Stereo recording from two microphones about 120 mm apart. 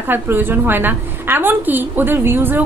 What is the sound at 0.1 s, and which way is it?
A woman's voice, 15° right (ahead or behind).